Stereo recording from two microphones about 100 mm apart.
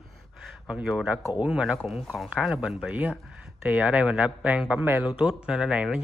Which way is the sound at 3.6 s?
15° right (ahead or behind).